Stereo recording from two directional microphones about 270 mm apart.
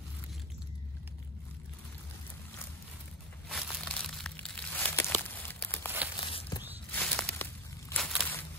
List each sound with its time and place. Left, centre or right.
3.4 s crumpling: centre
6.2 s walk: centre
6.9 s a sound: centre